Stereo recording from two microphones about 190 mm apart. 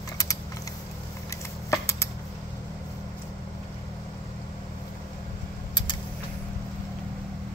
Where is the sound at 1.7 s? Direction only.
15° left (ahead or behind).